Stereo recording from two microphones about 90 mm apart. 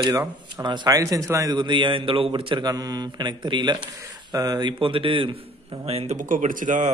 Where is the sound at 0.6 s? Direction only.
50° right (ahead or behind).